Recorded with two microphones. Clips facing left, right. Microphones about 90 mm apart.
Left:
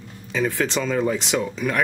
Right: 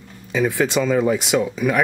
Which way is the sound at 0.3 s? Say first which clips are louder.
Right 4 dB; 10° right (ahead or behind).